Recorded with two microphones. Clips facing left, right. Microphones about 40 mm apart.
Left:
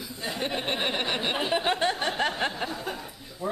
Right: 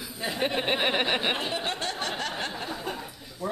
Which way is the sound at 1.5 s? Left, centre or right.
Centre.